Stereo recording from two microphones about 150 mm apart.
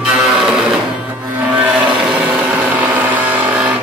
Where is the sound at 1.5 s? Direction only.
10° right (ahead or behind).